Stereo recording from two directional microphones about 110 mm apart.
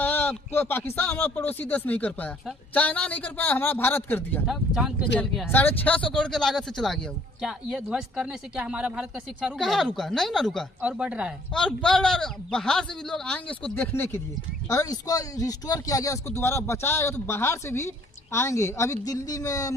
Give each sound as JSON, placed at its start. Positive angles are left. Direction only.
{"t": 0.0, "sound": "a man's voice", "side_deg": 15}
{"t": 4.5, "sound": "a man's voice", "side_deg": -5}
{"t": 5.5, "sound": "a man's voice", "side_deg": 15}
{"t": 9.6, "sound": "a man's voice", "side_deg": 0}
{"t": 10.8, "sound": "speech", "side_deg": -10}
{"t": 11.5, "sound": "a man's voice", "side_deg": 5}
{"t": 14.7, "sound": "speech", "side_deg": 35}